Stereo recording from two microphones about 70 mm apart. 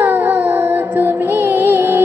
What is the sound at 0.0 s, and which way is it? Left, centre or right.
Music, right.